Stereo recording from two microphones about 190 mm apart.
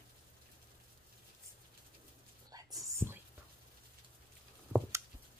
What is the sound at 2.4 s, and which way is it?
Whispering, 15° right (ahead or behind).